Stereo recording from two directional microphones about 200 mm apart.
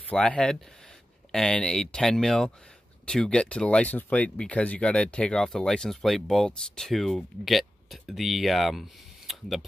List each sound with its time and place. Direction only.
0.1 s speech: 5° left (ahead or behind)